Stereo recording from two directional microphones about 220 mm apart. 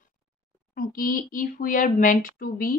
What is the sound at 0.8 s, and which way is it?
Speech, 40° left (ahead or behind).